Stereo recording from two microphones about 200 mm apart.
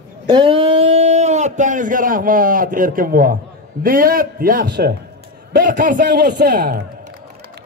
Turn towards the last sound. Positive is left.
turn(degrees=-50)  # may be behind; listen again after turning